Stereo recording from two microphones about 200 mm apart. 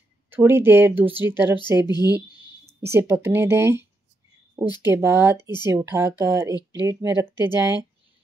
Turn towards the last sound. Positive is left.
turn(degrees=-10)  # may be behind; listen again after turning